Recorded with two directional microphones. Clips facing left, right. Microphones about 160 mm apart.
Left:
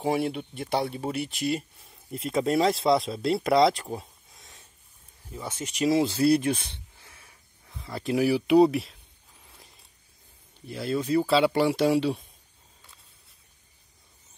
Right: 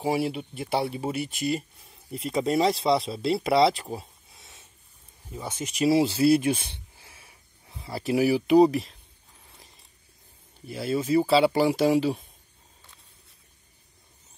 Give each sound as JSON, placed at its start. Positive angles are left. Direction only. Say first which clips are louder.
{"t": 0.0, "sound": "speech", "louder": "even", "side_deg": -5}
{"t": 5.6, "sound": "speech", "louder": "right 4 dB", "side_deg": -20}
{"t": 6.1, "sound": "speech", "louder": "right 1 dB", "side_deg": -5}
{"t": 6.7, "sound": "a sound", "louder": "right 1 dB", "side_deg": -10}
{"t": 7.6, "sound": "a sound", "louder": "even", "side_deg": -25}
{"t": 7.9, "sound": "speech", "louder": "right 1 dB", "side_deg": -5}
{"t": 10.7, "sound": "speech", "louder": "right 1 dB", "side_deg": -5}